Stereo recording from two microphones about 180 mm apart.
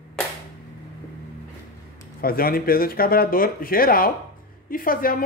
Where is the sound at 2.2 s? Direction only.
55° left (ahead or behind).